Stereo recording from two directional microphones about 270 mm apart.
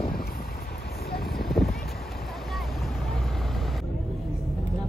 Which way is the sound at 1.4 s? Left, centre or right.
Centre.